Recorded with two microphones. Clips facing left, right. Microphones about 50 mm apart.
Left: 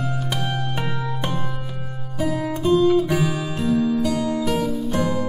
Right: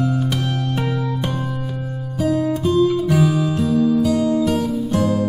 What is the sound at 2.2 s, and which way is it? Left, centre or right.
Music, centre.